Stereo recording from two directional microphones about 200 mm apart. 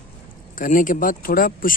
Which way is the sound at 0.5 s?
40° left (ahead or behind).